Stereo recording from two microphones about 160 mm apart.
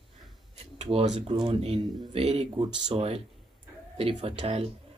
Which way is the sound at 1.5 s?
40° right (ahead or behind).